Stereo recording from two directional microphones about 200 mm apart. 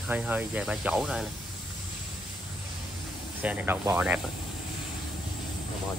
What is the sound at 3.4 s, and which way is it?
Speech, 10° right (ahead or behind).